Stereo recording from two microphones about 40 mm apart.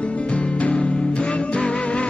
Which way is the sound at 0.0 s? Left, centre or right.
Left.